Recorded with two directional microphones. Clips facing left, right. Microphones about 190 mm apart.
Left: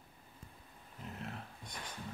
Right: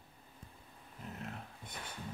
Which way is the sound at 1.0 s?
Centre (ahead or behind).